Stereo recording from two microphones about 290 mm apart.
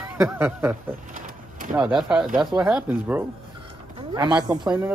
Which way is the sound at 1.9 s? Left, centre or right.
Centre.